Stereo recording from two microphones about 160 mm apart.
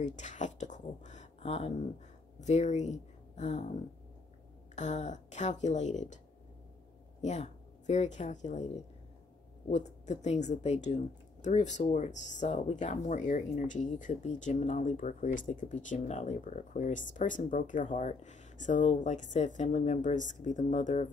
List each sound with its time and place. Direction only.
0.0 s a sound: 50° left (ahead or behind)
2.4 s speech: 45° left (ahead or behind)
4.7 s speech: 50° left (ahead or behind)
7.2 s speech: 45° left (ahead or behind)